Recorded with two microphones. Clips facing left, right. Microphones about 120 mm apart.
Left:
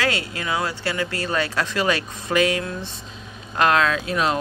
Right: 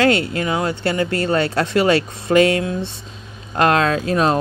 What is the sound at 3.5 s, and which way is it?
Speech, 35° right (ahead or behind).